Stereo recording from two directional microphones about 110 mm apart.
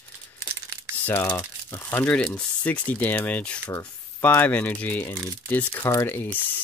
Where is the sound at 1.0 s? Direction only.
15° left (ahead or behind).